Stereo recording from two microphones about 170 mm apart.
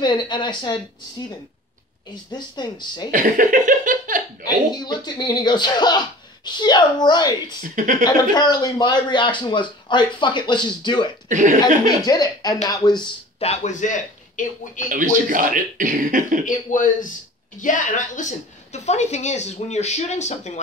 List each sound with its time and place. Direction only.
0.0 s a man's voice: 25° left (ahead or behind)
2.3 s a man's voice: 25° left (ahead or behind)
3.1 s laughter: 50° right (ahead or behind)
4.7 s a man's voice: 25° left (ahead or behind)
11.2 s speech: 45° right (ahead or behind)
11.6 s a man's voice: 20° left (ahead or behind)
13.4 s a man's voice: 40° left (ahead or behind)
14.9 s speech: 50° right (ahead or behind)
16.4 s a woman's voice: 50° left (ahead or behind)